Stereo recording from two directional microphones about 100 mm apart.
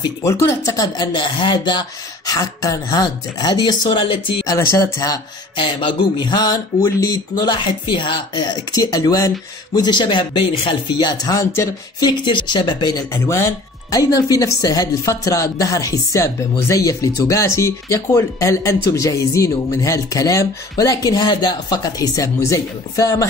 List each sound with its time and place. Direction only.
0.2 s speech: 30° left (ahead or behind); by 4.2 s 50° left (ahead or behind)
4.5 s speech: 35° left (ahead or behind)
5.6 s speech: 55° left (ahead or behind)
6.8 s speech: 35° left (ahead or behind)
9.8 s speech: 50° left (ahead or behind)
11.3 s speech: 35° left (ahead or behind)
13.1 s speech: 25° left (ahead or behind)
13.8 s speech: 40° left (ahead or behind)